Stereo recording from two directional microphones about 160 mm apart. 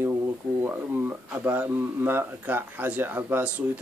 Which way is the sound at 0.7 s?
10° right (ahead or behind).